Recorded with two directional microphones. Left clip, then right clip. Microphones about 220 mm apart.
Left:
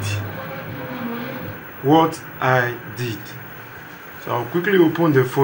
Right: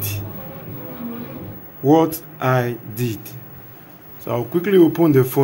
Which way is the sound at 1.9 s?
60° right (ahead or behind).